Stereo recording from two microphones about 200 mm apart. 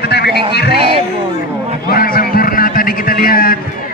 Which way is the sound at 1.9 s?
50° left (ahead or behind).